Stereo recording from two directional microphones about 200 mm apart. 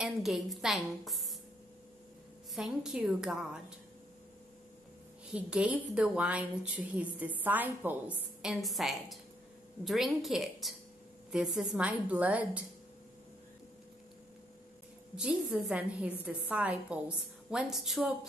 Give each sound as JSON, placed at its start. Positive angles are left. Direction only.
{"t": 0.0, "sound": "a woman's voice", "side_deg": 0}
{"t": 2.5, "sound": "a woman's voice", "side_deg": 0}
{"t": 5.3, "sound": "a woman's voice", "side_deg": -5}
{"t": 15.1, "sound": "a woman's voice", "side_deg": -5}